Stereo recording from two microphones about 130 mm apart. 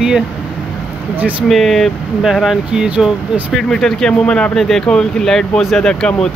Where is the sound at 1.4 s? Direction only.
Centre (ahead or behind).